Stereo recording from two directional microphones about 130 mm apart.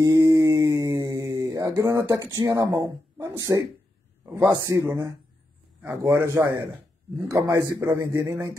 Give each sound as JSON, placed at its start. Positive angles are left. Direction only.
{"t": 0.0, "sound": "mantra", "side_deg": -25}
{"t": 2.7, "sound": "a man's voice", "side_deg": -20}